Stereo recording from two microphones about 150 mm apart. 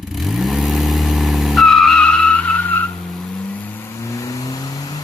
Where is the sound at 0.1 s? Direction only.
Centre (ahead or behind).